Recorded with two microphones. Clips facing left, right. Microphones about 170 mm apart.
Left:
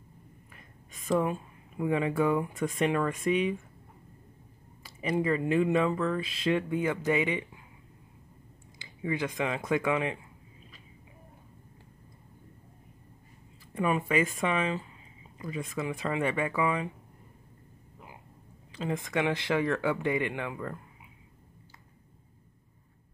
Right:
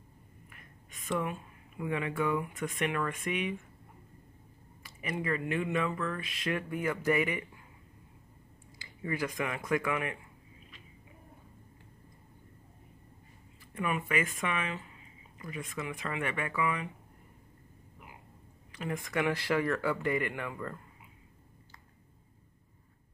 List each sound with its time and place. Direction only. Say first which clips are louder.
0.9 s speech: left 6 dB; 35° left (ahead or behind)
4.8 s speech: left 6 dB; 30° left (ahead or behind)
8.7 s speech: left 3 dB; 20° left (ahead or behind)
13.7 s speech: left 5 dB; 30° left (ahead or behind)
18.7 s speech: left 4 dB; 25° left (ahead or behind)